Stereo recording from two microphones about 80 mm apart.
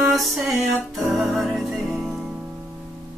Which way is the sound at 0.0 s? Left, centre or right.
Centre.